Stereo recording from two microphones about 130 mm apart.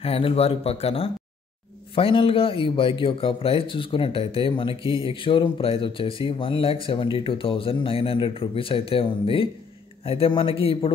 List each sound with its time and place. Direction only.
0.0 s speech: 50° left (ahead or behind)